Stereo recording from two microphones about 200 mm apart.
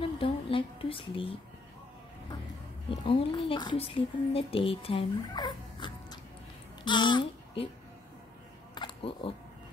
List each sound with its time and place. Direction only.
0.0 s a sound: 25° left (ahead or behind)
3.0 s a child's voice: 25° left (ahead or behind)
8.7 s camera: 25° left (ahead or behind)